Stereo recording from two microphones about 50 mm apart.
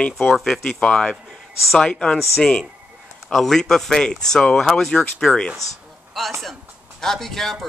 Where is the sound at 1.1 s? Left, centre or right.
Centre.